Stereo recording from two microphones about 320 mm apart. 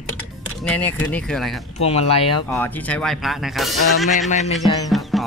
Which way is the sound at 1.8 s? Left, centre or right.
Centre.